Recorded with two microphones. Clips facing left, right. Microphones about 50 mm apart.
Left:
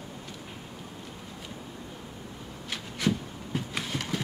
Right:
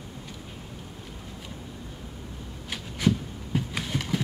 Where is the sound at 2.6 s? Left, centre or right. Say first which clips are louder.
Right 3 dB; centre.